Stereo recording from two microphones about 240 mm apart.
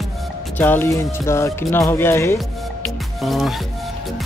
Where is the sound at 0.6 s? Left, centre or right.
Centre.